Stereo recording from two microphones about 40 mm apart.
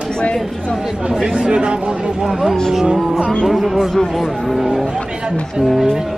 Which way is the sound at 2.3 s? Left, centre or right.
Centre.